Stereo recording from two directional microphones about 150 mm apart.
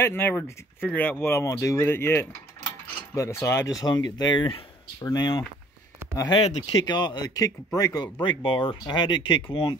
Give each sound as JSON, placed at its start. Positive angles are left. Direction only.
{"t": 0.0, "sound": "speech", "side_deg": 15}